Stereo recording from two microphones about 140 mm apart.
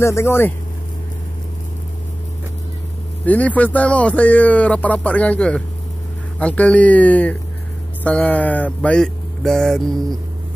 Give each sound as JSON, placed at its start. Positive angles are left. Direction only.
{"t": 0.0, "sound": "speech", "side_deg": 20}
{"t": 3.3, "sound": "speech", "side_deg": 10}